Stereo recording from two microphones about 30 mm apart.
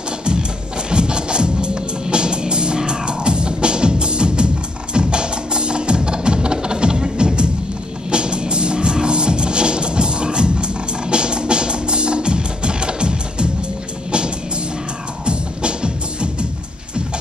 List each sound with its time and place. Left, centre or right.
0.2 s music: right
15.2 s music: right